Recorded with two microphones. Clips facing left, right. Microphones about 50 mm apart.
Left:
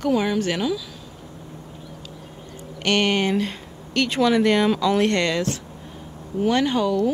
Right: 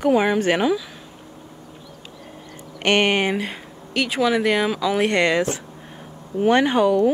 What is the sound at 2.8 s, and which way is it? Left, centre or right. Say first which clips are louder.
Speech: right 2 dB; right.